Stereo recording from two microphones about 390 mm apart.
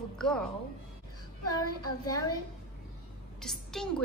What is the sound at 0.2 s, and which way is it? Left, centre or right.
Speech, centre.